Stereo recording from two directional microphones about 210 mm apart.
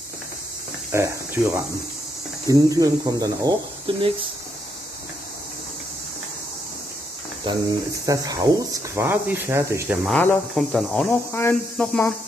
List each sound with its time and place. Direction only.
0.9 s speech: 15° right (ahead or behind)
7.5 s speech: 25° right (ahead or behind)
10.0 s speech: centre (ahead or behind)